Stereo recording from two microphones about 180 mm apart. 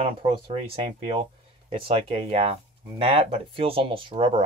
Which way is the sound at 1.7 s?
30° right (ahead or behind).